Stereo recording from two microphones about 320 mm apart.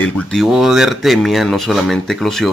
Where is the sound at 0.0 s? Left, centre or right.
Centre.